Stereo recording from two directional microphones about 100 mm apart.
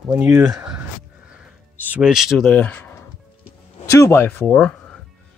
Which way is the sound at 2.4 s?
15° left (ahead or behind).